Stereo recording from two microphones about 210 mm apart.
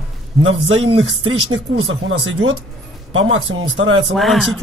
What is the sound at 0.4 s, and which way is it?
Speech, 65° right (ahead or behind).